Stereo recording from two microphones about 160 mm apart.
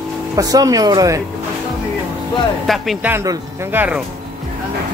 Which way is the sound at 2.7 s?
Centre (ahead or behind).